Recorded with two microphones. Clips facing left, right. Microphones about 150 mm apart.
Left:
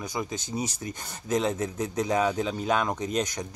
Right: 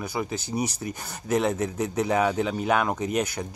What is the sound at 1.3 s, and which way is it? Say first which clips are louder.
Speech: right 2 dB; 10° right (ahead or behind).